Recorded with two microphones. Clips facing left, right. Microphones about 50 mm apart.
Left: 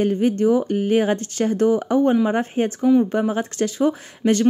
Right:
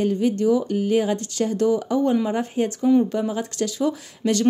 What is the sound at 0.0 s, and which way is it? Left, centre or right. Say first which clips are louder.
A woman's voice: left 2 dB; left.